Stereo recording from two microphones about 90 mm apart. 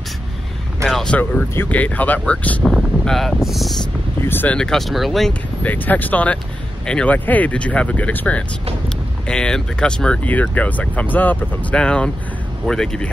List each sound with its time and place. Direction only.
0.8 s a sound: 10° left (ahead or behind)
1.5 s speech: 20° left (ahead or behind)
2.6 s speech: centre (ahead or behind)
4.2 s speech: 25° left (ahead or behind)
4.6 s speech: 5° left (ahead or behind)
5.6 s speech: 20° left (ahead or behind)